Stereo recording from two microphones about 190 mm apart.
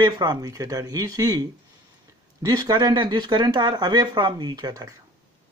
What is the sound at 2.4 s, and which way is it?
Speech, 20° right (ahead or behind).